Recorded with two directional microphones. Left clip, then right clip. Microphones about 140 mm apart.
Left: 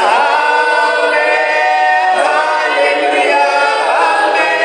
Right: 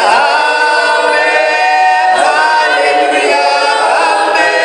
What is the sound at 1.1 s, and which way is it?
Choir, 40° right (ahead or behind).